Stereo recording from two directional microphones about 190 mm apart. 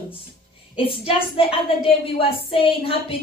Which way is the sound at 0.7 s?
30° left (ahead or behind).